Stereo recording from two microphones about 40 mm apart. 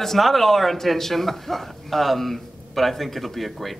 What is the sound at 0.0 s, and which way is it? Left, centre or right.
Speech, centre.